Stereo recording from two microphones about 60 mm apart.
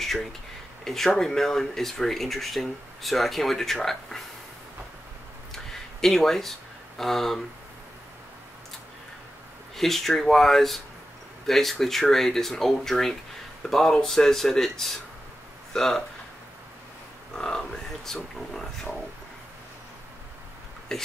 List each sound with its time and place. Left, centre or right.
0.8 s speech: centre
5.5 s a sound: centre
7.0 s speech: centre
9.8 s speech: centre
17.4 s speech: centre
20.9 s speech: centre